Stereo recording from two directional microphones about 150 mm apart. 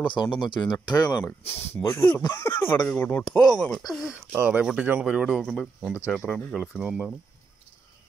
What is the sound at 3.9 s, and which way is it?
Speech, 5° right (ahead or behind).